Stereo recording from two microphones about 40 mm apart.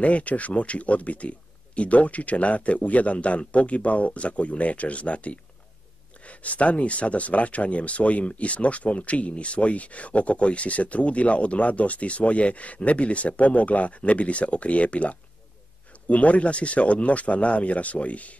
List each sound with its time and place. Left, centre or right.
0.0 s speech: left